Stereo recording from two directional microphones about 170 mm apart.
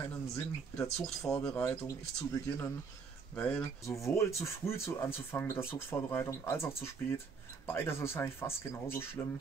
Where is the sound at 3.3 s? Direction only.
10° left (ahead or behind).